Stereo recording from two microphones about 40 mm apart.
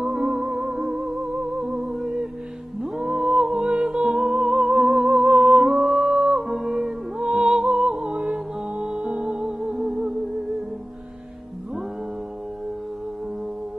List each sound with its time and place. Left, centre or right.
0.0 s music: centre
2.0 s music: centre
6.4 s music: centre